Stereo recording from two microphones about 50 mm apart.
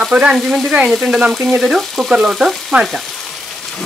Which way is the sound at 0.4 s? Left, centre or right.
Centre.